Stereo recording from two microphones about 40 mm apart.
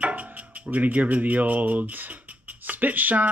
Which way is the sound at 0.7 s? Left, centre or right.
Right.